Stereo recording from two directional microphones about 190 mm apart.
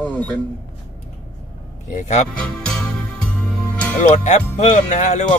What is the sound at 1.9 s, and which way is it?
Music, 35° left (ahead or behind).